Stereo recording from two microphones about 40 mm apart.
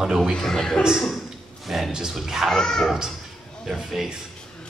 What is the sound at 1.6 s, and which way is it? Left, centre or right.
Speech, centre.